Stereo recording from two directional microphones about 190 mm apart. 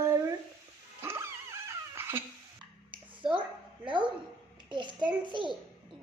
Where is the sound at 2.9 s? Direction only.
25° right (ahead or behind).